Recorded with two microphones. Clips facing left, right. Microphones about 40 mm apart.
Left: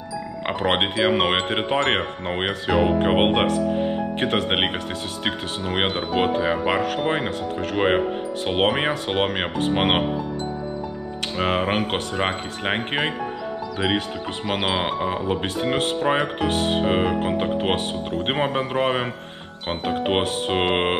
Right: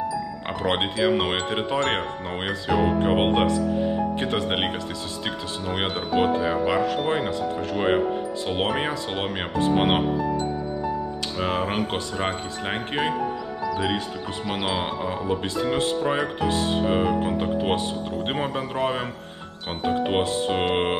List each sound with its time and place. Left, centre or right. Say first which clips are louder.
0.5 s speech: left 4 dB; left
11.3 s speech: left 4 dB; left
14.4 s speech: left 3 dB; left
16.8 s speech: left 1 dB; left